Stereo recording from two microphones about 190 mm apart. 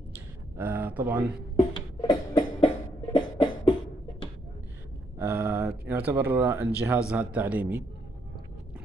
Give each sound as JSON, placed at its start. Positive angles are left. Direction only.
{"t": 0.6, "sound": "speech", "side_deg": -10}
{"t": 1.6, "sound": "music", "side_deg": 25}
{"t": 5.2, "sound": "a sound", "side_deg": -10}
{"t": 5.7, "sound": "speech", "side_deg": -10}